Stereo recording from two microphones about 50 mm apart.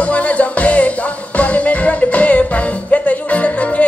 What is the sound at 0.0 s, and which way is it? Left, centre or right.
Music, left.